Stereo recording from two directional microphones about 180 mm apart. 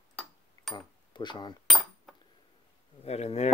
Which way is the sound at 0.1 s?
5° left (ahead or behind).